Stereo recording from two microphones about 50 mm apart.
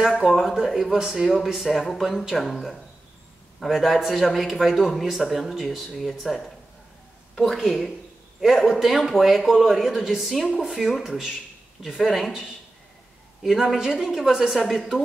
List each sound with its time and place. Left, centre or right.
0.0 s speech: centre